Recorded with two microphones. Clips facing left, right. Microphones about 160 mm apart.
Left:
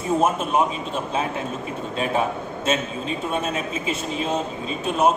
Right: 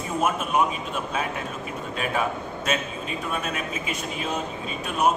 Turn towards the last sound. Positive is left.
turn(degrees=30)  # may be behind; listen again after turning